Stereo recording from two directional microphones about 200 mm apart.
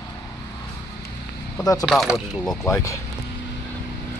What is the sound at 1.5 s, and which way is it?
Speech, 20° left (ahead or behind).